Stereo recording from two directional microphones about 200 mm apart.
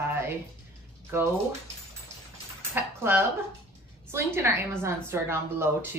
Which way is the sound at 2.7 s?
10° right (ahead or behind).